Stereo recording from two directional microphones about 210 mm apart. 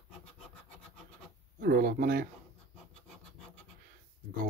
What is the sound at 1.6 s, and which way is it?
Speech, 45° right (ahead or behind).